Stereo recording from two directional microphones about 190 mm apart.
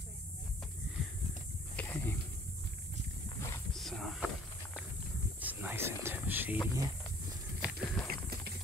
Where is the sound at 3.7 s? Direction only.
Centre (ahead or behind).